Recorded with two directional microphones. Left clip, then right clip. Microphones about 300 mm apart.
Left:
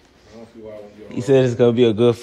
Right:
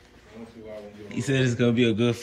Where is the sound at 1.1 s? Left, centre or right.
Centre.